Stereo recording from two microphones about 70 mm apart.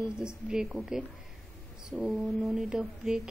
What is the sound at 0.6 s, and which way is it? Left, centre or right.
Speech, centre.